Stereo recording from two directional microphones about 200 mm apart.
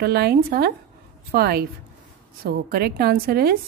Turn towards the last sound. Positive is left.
turn(degrees=-50)  # may be behind; listen again after turning